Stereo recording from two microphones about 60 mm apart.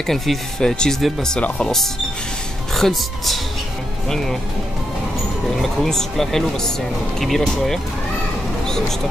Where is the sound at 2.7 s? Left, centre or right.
Centre.